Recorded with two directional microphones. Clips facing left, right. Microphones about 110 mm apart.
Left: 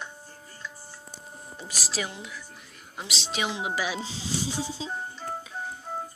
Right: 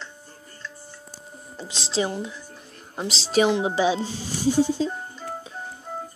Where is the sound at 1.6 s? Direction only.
25° right (ahead or behind).